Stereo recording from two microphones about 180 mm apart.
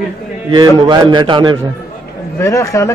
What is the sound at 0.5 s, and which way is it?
A man's voice, 25° right (ahead or behind).